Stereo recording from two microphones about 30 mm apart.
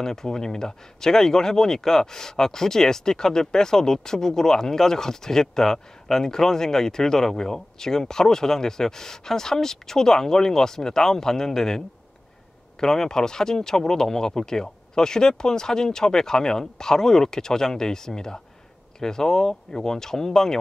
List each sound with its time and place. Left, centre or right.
0.0 s speech: centre
12.8 s speech: centre